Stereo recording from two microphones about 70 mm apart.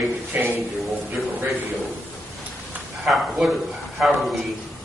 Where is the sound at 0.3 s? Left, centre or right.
Right.